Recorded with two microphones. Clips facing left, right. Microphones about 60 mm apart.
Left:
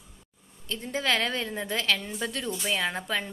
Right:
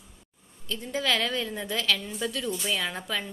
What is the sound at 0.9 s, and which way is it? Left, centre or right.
A woman's voice, left.